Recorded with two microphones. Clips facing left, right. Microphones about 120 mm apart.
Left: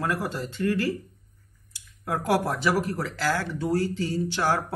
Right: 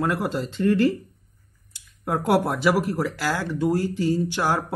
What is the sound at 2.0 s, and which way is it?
Speech, 25° right (ahead or behind).